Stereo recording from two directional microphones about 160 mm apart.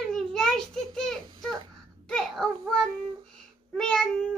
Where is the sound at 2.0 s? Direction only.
5° left (ahead or behind).